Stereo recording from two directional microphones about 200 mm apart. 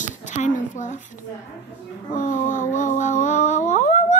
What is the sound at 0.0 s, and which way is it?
Speech, 40° left (ahead or behind).